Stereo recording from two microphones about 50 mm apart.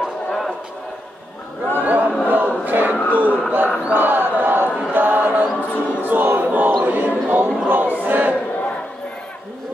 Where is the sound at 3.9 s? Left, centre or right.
Right.